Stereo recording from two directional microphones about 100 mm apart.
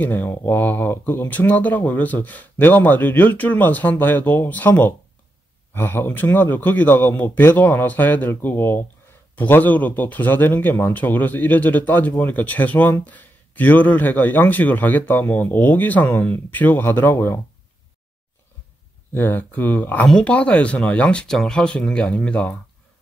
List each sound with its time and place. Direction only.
0.0 s a man's voice: 20° left (ahead or behind)
19.1 s a man's voice: 20° left (ahead or behind)